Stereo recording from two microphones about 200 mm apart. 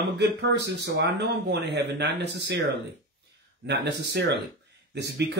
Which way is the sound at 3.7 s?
60° right (ahead or behind).